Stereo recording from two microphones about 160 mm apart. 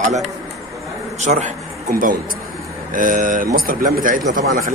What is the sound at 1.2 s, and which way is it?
A man's voice, 45° right (ahead or behind).